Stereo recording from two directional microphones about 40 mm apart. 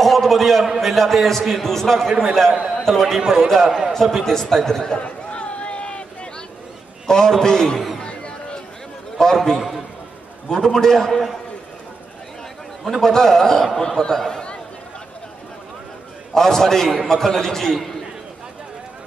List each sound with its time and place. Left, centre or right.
0.0 s a man's voice: centre
4.9 s a sound: left
7.1 s a man's voice: centre
8.0 s music: left
9.2 s a man's voice: centre
13.0 s a man's voice: centre
16.3 s a man's voice: centre